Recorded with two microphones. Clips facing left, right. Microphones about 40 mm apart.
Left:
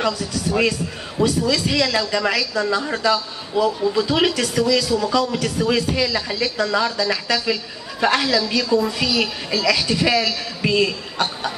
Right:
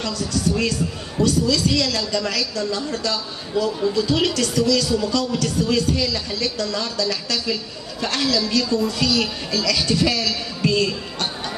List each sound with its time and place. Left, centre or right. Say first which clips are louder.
0.0 s speech: left 1 dB; centre